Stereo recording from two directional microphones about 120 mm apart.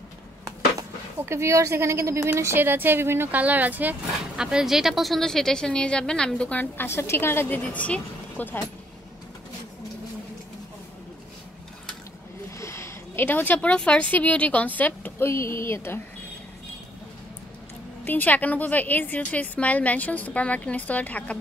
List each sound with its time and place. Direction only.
1.3 s a woman's voice: 25° right (ahead or behind); by 8.6 s 10° left (ahead or behind)
12.5 s speech: 25° left (ahead or behind)
18.0 s speech: 15° left (ahead or behind)